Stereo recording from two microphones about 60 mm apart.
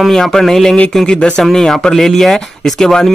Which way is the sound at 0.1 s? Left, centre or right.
Centre.